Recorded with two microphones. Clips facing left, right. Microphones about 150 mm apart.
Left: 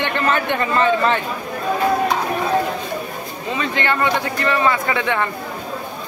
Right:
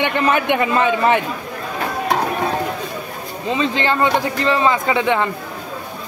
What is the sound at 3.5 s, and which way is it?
A man's voice, 25° right (ahead or behind).